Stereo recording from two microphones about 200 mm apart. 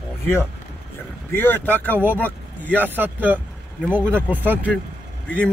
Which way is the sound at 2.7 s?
10° right (ahead or behind).